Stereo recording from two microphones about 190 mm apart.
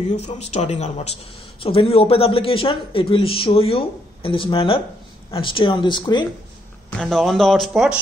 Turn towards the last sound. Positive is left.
turn(degrees=0)  # may be behind; listen again after turning